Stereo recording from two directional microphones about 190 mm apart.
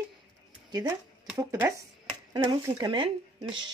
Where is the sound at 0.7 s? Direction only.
20° right (ahead or behind).